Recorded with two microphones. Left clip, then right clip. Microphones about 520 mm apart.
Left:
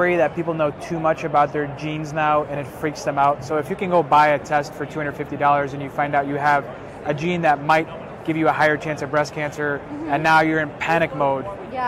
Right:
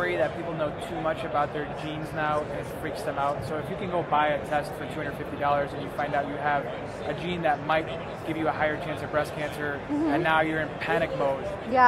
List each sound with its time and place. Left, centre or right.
0.0 s a man's voice: left